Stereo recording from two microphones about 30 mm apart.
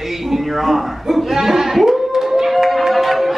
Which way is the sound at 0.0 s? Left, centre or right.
Centre.